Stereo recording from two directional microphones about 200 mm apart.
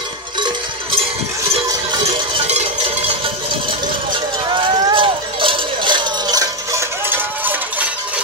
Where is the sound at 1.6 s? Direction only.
20° right (ahead or behind).